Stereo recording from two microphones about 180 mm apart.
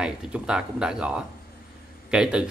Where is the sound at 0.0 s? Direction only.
5° right (ahead or behind).